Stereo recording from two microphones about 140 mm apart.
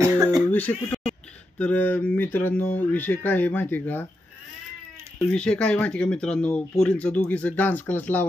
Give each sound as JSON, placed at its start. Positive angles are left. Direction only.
{"t": 0.0, "sound": "throat clearing", "side_deg": -25}
{"t": 0.5, "sound": "a sound", "side_deg": 10}
{"t": 1.6, "sound": "speech", "side_deg": 10}
{"t": 5.2, "sound": "speech", "side_deg": 5}